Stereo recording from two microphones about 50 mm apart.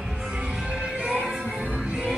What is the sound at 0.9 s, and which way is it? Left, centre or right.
Music, right.